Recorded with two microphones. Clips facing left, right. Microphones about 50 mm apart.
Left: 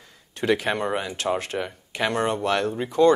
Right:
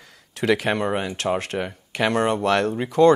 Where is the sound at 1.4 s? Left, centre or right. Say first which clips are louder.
Right 2 dB; right.